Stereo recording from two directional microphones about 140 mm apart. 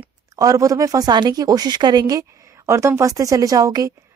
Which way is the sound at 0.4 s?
25° right (ahead or behind).